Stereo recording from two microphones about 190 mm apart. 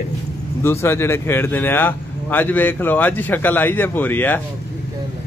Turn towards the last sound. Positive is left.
turn(degrees=10)  # may be behind; listen again after turning